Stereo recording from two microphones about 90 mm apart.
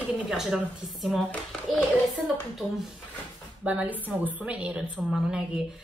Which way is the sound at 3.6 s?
15° right (ahead or behind).